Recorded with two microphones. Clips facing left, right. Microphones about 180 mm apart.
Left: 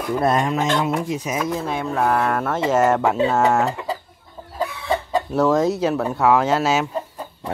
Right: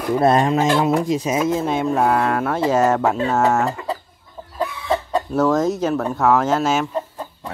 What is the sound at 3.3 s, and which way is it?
Speech, 10° left (ahead or behind).